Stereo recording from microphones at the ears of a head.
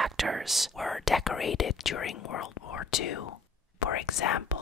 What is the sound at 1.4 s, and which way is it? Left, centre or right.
Speech, left.